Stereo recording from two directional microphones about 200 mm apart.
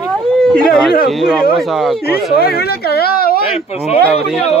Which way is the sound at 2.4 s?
50° left (ahead or behind).